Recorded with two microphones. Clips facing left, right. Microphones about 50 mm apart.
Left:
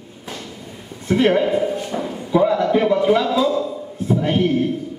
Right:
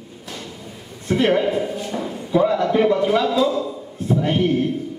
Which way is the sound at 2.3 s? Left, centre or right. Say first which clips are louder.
Left 1 dB; centre.